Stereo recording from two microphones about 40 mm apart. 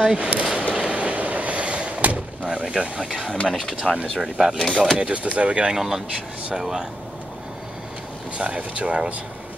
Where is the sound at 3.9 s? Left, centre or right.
Centre.